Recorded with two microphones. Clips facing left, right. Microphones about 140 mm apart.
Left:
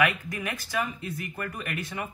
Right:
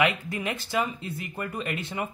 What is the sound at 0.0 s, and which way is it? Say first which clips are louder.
Speech: right 1 dB; 25° right (ahead or behind).